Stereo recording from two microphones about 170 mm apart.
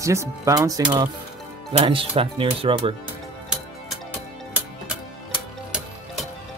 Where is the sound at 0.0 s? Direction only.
15° right (ahead or behind).